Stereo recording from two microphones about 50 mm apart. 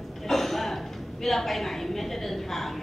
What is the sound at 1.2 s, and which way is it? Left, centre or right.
Speech, centre.